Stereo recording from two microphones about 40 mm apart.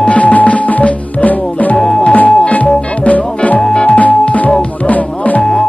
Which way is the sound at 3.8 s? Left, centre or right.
Left.